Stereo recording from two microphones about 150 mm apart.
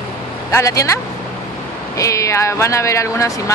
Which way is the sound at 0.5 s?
20° left (ahead or behind).